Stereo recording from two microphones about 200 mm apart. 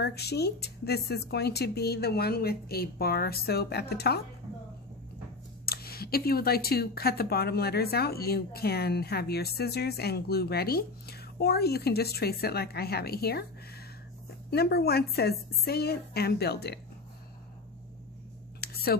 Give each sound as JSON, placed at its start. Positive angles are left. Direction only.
{"t": 0.0, "sound": "speech", "side_deg": 55}
{"t": 5.7, "sound": "speech", "side_deg": 50}
{"t": 14.5, "sound": "speech", "side_deg": 55}
{"t": 18.6, "sound": "a sound", "side_deg": 50}